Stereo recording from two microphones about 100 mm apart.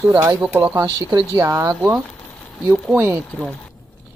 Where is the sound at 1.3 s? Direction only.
35° right (ahead or behind).